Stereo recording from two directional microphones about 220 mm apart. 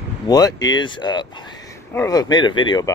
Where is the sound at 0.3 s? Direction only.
15° left (ahead or behind).